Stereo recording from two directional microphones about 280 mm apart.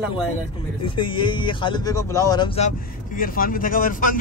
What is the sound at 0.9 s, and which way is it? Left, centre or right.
Speech, centre.